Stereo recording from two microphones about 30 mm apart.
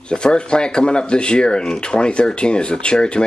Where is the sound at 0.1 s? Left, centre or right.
Left.